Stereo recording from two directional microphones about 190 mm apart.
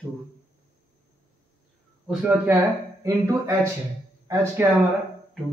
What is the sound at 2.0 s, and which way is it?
Speech, 10° right (ahead or behind).